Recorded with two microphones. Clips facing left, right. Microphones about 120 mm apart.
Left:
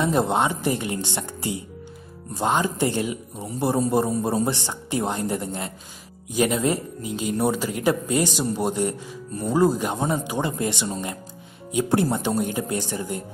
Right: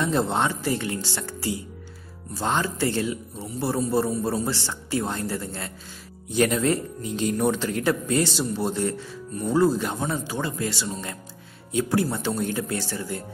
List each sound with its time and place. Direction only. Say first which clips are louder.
0.0 s speech: left 2 dB; 15° left (ahead or behind)